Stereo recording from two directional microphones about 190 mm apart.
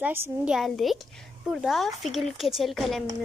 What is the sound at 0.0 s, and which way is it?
A woman's voice, 10° right (ahead or behind).